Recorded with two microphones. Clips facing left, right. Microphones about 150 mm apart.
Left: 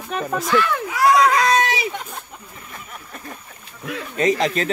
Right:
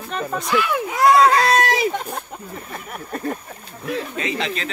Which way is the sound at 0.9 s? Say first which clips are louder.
Right 2 dB; 25° right (ahead or behind).